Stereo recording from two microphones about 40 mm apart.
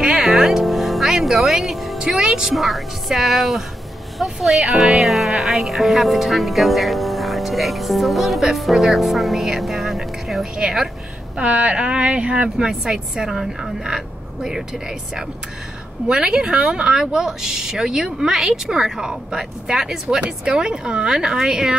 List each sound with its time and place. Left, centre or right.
0.0 s music: centre
2.0 s speech: centre
2.5 s speech: centre
11.5 s a woman's voice: right
16.1 s a woman's voice: centre
17.0 s a woman's voice: centre
20.2 s speech: right